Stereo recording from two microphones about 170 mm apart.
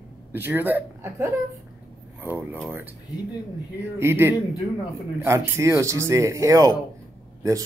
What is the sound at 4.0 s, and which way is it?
A woman's voice, 15° right (ahead or behind).